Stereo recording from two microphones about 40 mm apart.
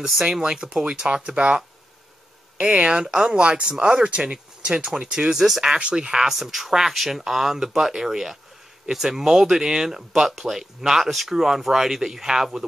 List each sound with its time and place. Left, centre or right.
0.2 s speech: centre
2.6 s speech: right
5.8 s speech: right